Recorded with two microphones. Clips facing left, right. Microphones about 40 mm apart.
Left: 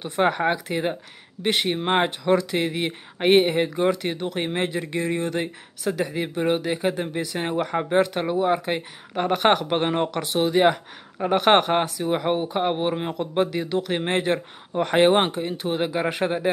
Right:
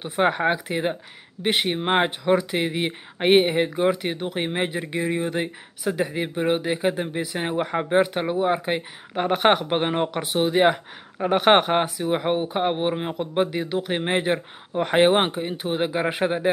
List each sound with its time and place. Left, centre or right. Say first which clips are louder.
0.0 s speech: even; centre
7.3 s speech: even; centre